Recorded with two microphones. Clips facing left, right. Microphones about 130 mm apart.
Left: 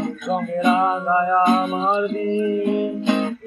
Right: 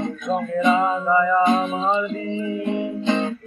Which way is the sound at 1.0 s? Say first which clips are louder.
Even; 25° left (ahead or behind).